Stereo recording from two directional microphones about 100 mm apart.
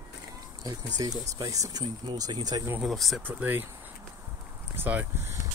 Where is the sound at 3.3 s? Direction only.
20° right (ahead or behind).